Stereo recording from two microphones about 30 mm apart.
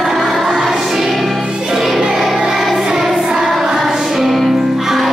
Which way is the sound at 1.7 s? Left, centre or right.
Centre.